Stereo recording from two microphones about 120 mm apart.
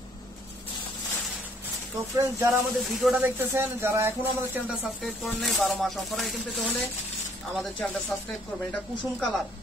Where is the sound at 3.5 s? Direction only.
20° right (ahead or behind).